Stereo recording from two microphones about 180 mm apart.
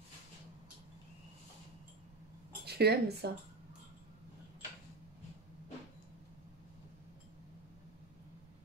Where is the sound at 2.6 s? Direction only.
65° right (ahead or behind).